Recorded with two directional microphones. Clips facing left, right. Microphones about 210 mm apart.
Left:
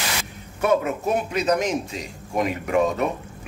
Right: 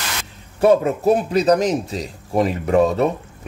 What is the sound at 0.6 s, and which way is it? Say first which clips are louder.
Speech: right 7 dB; 35° right (ahead or behind).